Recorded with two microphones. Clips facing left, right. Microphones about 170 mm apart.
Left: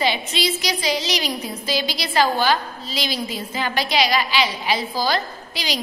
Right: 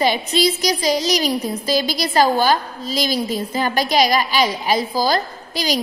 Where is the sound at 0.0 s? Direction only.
45° right (ahead or behind).